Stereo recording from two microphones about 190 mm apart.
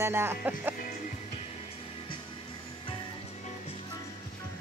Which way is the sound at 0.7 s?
45° left (ahead or behind).